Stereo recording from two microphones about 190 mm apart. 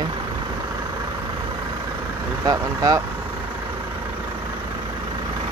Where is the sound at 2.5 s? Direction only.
20° right (ahead or behind).